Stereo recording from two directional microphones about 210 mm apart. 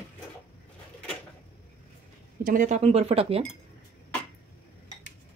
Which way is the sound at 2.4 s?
40° right (ahead or behind).